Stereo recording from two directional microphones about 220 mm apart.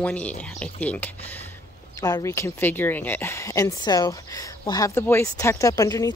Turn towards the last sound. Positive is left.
turn(degrees=15)  # may be behind; listen again after turning